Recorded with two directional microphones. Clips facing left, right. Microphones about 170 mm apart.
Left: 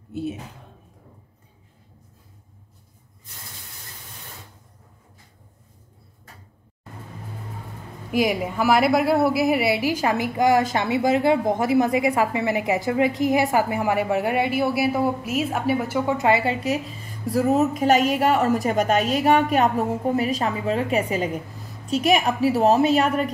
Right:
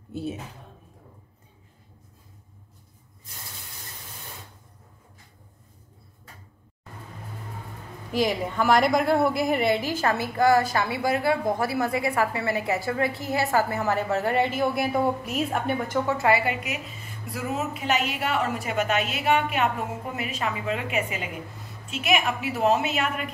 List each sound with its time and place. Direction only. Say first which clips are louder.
8.1 s a woman's voice: left 3 dB; 10° left (ahead or behind); by 23.3 s 35° left (ahead or behind)